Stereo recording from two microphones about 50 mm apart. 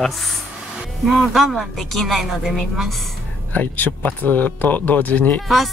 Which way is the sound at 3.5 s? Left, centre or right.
Left.